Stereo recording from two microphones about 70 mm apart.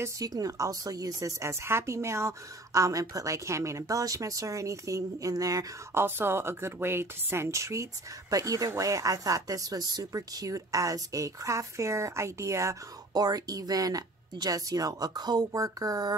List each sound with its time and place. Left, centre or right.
0.2 s a woman's voice: right
5.9 s a woman's voice: right
13.1 s speech: right